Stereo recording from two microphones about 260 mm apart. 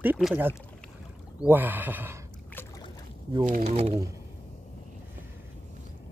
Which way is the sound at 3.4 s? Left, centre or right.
Right.